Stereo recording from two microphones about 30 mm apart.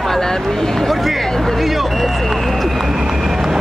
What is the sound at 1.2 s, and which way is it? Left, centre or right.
Speech, centre.